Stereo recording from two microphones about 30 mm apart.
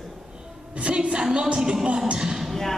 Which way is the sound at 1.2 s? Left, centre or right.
Right.